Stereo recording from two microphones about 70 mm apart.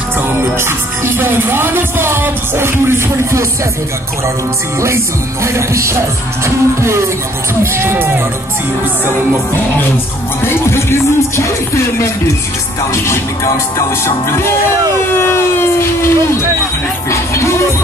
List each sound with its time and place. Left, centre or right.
0.4 s music: right
4.8 s music: right
10.4 s music: left
15.1 s music: left